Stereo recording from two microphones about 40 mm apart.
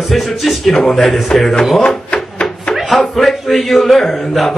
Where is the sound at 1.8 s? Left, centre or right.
Left.